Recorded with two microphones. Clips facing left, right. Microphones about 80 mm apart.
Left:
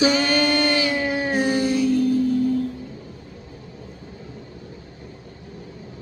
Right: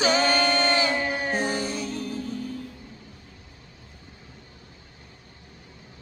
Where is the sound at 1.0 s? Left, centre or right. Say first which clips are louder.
Left 5 dB; centre.